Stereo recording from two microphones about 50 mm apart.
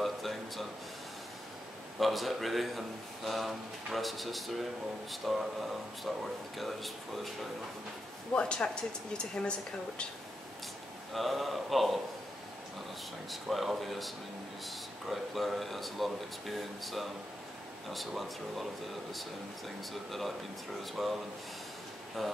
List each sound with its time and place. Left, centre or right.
0.0 s a sound: centre
2.0 s speech: centre
8.4 s speech: centre
11.1 s speech: centre
13.3 s speech: centre
19.9 s speech: centre